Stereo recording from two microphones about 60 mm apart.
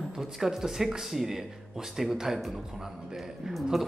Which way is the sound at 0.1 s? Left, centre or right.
Centre.